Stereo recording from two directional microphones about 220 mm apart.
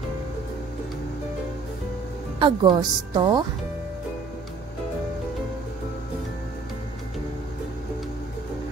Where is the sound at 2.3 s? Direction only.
20° right (ahead or behind).